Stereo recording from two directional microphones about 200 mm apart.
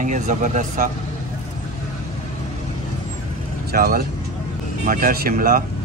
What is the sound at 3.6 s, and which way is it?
A man's voice, 50° right (ahead or behind).